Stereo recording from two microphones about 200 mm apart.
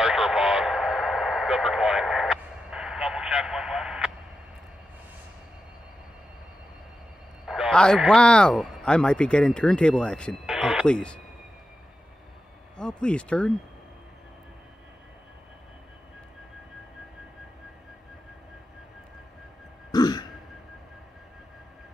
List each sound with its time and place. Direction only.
0.0 s radio: 5° right (ahead or behind)
7.4 s a man's voice: 5° right (ahead or behind)
12.7 s a man's voice: 5° left (ahead or behind)
19.9 s burping: 20° left (ahead or behind)